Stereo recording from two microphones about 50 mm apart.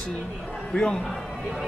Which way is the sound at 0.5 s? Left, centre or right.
Left.